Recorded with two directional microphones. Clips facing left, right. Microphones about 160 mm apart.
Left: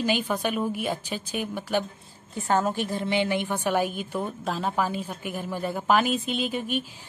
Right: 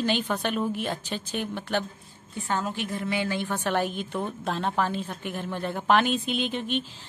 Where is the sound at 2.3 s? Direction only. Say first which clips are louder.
Left 5 dB; 45° left (ahead or behind).